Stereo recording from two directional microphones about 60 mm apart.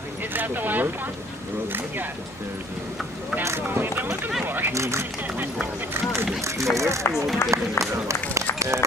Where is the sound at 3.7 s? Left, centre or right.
Right.